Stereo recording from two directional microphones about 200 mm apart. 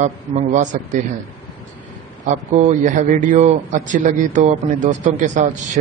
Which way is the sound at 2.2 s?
40° right (ahead or behind).